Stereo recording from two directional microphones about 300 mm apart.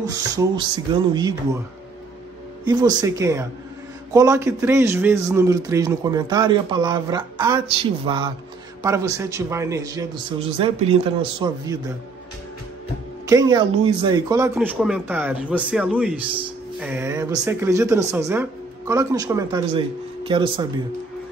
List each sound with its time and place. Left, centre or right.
0.0 s a man's voice: centre
2.6 s a man's voice: centre
13.3 s a man's voice: centre